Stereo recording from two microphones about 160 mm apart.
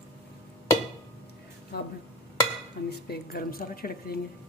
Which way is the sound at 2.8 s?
85° left.